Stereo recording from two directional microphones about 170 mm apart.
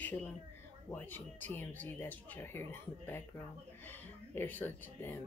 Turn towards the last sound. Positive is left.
turn(degrees=10)  # may be behind; listen again after turning